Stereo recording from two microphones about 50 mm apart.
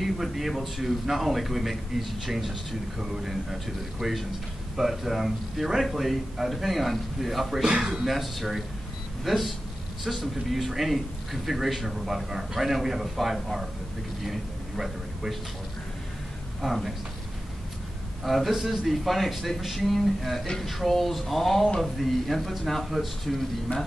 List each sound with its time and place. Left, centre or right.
0.0 s a man's voice: centre
16.6 s a man's voice: centre
18.2 s a man's voice: centre
23.7 s speech: left